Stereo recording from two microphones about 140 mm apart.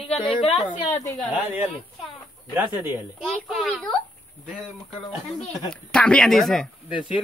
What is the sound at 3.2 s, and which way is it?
Speech, 5° right (ahead or behind).